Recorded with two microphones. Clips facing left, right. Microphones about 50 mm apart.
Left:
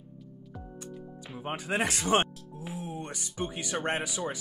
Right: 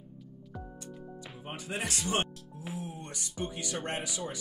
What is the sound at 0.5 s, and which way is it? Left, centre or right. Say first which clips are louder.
Music: left 1 dB; centre.